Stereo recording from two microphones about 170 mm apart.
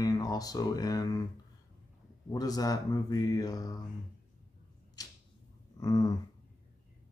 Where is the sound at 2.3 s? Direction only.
20° left (ahead or behind).